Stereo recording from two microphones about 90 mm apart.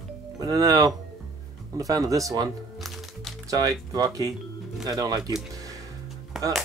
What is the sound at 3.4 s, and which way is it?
Speech, 40° right (ahead or behind).